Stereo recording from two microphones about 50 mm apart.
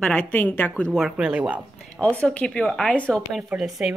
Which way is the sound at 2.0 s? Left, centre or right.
Left.